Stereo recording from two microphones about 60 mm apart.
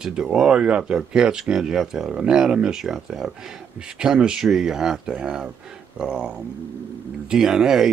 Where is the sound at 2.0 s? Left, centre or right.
Centre.